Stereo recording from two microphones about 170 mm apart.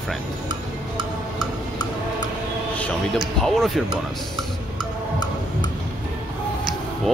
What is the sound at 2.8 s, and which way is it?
Speech, centre (ahead or behind).